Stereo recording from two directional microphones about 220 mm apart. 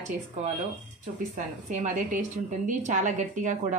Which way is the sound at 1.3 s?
35° right (ahead or behind).